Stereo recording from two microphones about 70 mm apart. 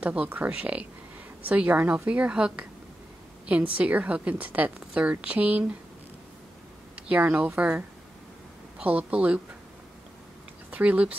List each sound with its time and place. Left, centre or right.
0.0 s a woman's voice: centre
7.1 s a woman's voice: right
10.7 s speech: centre